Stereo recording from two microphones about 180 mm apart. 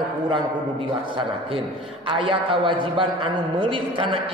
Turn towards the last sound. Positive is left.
turn(degrees=-30)  # may be behind; listen again after turning